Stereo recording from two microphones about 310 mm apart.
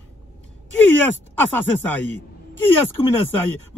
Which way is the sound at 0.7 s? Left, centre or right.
Centre.